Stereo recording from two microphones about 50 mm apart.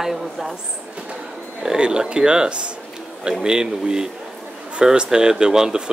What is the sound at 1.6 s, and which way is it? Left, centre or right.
Speech, centre.